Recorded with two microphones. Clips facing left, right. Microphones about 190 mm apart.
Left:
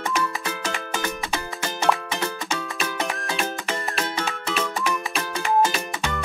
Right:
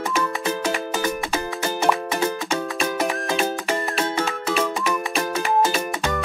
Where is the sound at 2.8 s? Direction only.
45° right (ahead or behind).